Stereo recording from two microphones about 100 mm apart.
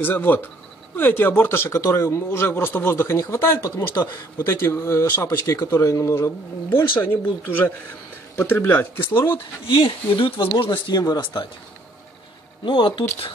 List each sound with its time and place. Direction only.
0.0 s speech: 20° left (ahead or behind)
9.7 s speech: 60° left (ahead or behind)
11.0 s speech: 45° left (ahead or behind)
12.6 s speech: 55° left (ahead or behind)